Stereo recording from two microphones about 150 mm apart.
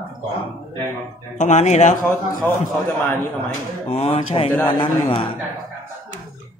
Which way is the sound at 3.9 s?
45° left (ahead or behind).